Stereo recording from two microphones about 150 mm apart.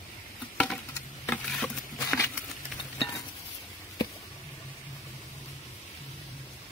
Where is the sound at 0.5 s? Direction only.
5° left (ahead or behind).